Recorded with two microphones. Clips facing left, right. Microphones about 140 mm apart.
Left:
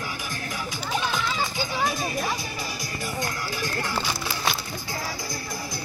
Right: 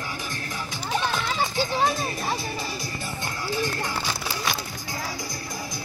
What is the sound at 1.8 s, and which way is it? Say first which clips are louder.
Music: right 1 dB; 25° right (ahead or behind).